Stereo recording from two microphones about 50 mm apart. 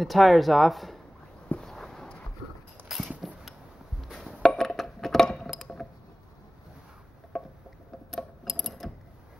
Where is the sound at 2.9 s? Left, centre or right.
Centre.